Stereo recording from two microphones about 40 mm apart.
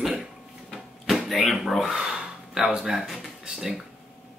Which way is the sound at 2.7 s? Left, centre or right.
Centre.